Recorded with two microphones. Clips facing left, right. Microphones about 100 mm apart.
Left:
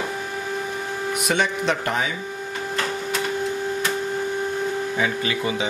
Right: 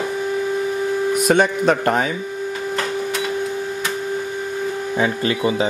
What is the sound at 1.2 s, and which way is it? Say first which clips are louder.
Speech: right 6 dB; 45° right (ahead or behind).